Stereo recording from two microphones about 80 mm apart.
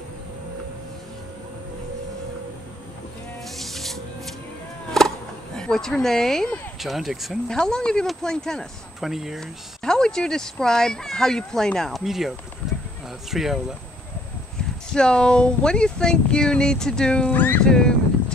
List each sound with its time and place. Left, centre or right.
3.4 s music: centre
4.9 s a sound: centre
6.8 s speech: centre
7.4 s speech: centre
9.0 s speech: centre
9.4 s speech: centre
15.0 s speech: centre
17.3 s speech: left
17.6 s speech: centre